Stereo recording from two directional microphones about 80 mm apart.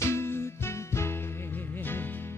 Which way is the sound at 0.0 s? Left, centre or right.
Left.